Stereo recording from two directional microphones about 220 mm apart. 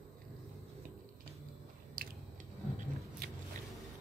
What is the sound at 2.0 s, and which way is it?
Biting, 40° right (ahead or behind).